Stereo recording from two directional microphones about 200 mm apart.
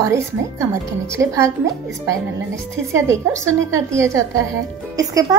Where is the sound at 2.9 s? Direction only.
15° right (ahead or behind).